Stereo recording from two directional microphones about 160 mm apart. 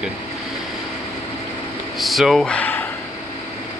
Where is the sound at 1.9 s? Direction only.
Centre (ahead or behind).